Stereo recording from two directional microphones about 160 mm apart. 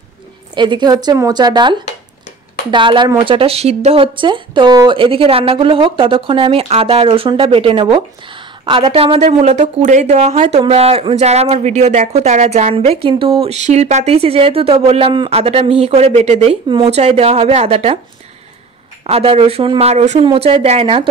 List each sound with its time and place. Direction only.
0.6 s a woman's voice: 30° right (ahead or behind); by 10.6 s 50° right (ahead or behind)
10.6 s speech: 40° right (ahead or behind)
19.0 s speech: 35° right (ahead or behind)